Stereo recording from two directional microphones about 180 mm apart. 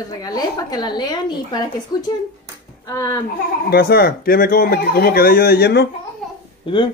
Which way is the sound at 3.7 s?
60° left (ahead or behind).